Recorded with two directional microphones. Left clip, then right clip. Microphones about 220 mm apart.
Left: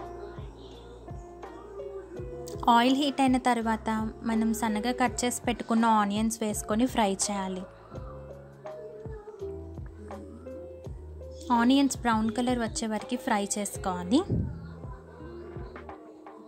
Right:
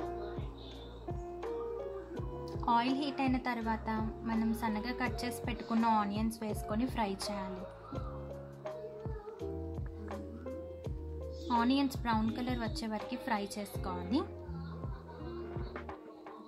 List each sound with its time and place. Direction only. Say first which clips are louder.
2.4 s a woman's voice: left 9 dB; 30° left (ahead or behind)
10.0 s music: left 2 dB; centre (ahead or behind)
11.4 s a woman's voice: left 7 dB; 30° left (ahead or behind)